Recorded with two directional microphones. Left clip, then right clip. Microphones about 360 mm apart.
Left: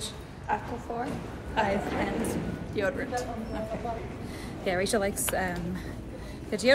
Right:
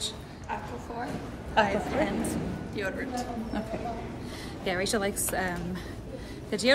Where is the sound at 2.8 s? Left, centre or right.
Centre.